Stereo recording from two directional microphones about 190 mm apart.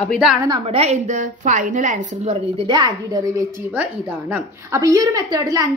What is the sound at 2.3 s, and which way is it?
A woman's voice, 25° right (ahead or behind).